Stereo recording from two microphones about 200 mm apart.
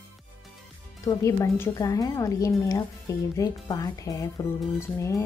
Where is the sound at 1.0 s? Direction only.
15° left (ahead or behind).